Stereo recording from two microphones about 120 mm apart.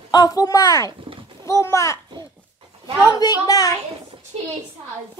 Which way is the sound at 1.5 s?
25° left (ahead or behind).